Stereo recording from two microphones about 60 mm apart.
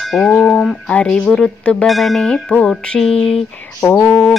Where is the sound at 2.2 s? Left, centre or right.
Centre.